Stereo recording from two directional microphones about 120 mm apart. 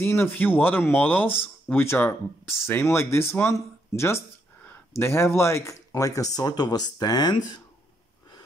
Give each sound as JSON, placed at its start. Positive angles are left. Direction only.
{"t": 0.0, "sound": "speech", "side_deg": 20}